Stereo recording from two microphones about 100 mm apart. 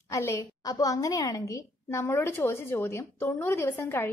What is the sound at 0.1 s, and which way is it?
A woman's voice, 25° left (ahead or behind).